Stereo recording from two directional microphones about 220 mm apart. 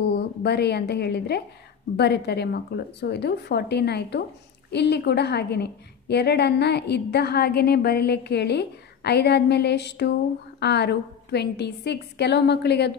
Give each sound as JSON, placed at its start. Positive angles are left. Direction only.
{"t": 0.1, "sound": "a woman's voice", "side_deg": 50}